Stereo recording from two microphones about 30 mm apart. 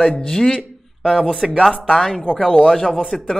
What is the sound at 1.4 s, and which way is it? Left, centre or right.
Speech, right.